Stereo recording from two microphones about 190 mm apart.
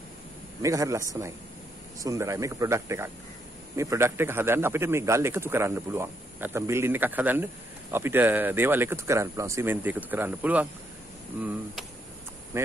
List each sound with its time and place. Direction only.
0.6 s a man's voice: 15° right (ahead or behind)
12.5 s speech: 15° right (ahead or behind)